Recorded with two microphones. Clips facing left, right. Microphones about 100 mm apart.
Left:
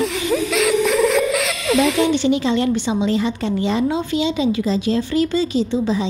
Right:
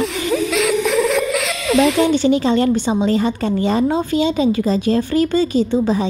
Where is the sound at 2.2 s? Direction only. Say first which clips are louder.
Right 3 dB; 40° right (ahead or behind).